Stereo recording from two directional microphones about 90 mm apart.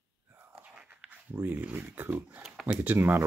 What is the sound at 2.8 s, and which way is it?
Speech, 25° right (ahead or behind).